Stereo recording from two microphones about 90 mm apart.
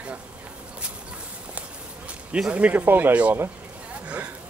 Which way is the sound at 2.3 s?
10° right (ahead or behind).